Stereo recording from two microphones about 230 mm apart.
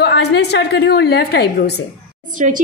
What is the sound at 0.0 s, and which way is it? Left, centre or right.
A woman's voice, left.